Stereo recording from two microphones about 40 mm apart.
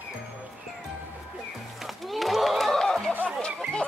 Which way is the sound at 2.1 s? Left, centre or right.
Centre.